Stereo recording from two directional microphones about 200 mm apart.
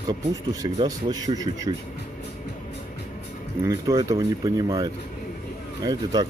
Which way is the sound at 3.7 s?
15° right (ahead or behind).